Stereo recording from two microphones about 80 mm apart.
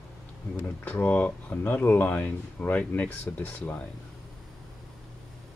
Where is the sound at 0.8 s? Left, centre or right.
Centre.